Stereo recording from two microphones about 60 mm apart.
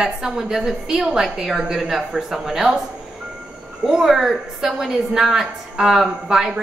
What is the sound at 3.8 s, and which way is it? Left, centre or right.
A woman's voice, centre.